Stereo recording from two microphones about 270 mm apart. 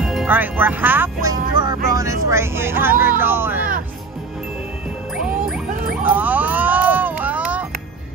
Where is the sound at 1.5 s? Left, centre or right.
Centre.